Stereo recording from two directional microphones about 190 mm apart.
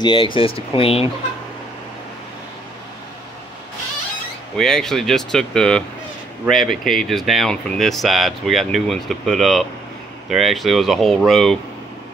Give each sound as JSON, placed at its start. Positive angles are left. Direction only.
{"t": 0.0, "sound": "speech", "side_deg": 25}
{"t": 4.6, "sound": "speech", "side_deg": 0}